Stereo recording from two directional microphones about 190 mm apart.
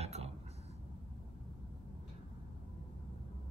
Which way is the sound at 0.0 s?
35° right (ahead or behind).